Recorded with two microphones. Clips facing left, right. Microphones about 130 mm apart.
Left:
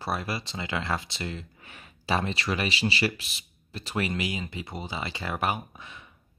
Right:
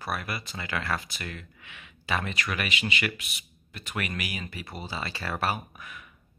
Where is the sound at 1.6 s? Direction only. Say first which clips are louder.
Left 4 dB; 40° left (ahead or behind).